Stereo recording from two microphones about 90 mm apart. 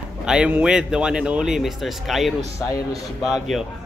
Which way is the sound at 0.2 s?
10° right (ahead or behind).